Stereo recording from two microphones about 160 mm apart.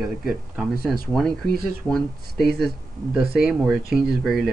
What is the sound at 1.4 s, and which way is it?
Speech, 70° right (ahead or behind).